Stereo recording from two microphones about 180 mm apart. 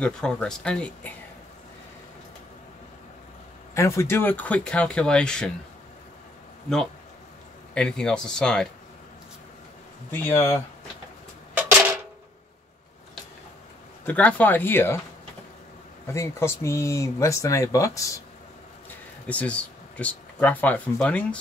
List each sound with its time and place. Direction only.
0.0 s speech: 5° left (ahead or behind)
3.7 s speech: 15° left (ahead or behind)
7.7 s speech: 5° left (ahead or behind)
10.2 s speech: 15° left (ahead or behind)
14.0 s speech: 10° left (ahead or behind)
16.1 s speech: 15° left (ahead or behind)
19.2 s speech: 5° left (ahead or behind)